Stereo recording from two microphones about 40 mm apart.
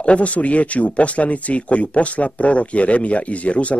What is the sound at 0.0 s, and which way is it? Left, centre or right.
Speech, left.